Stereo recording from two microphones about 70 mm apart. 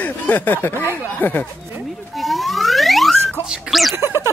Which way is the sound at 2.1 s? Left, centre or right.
Centre.